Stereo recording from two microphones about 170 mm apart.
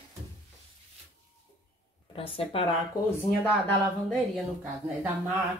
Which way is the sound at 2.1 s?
35° left (ahead or behind).